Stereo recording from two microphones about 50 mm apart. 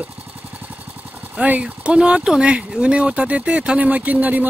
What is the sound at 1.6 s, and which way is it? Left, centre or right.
Speech, centre.